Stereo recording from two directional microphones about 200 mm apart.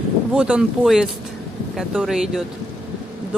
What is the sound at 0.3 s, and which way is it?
Speech, 5° right (ahead or behind).